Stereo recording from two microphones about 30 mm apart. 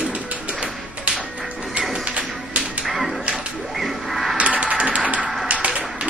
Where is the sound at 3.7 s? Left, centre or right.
Centre.